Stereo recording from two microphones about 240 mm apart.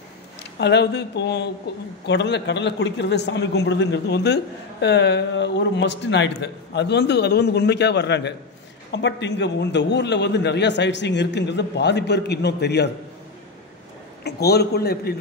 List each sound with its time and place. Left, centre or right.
0.6 s a man's voice: left
14.2 s a man's voice: left